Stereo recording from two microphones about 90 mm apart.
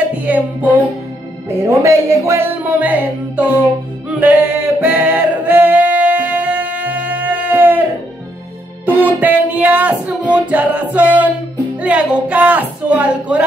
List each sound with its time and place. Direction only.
0.1 s music: 15° right (ahead or behind)
1.6 s speech: 30° right (ahead or behind)
2.6 s music: 20° right (ahead or behind)
4.1 s singing: 15° right (ahead or behind)
8.8 s music: 20° right (ahead or behind)
11.8 s speech: 15° right (ahead or behind)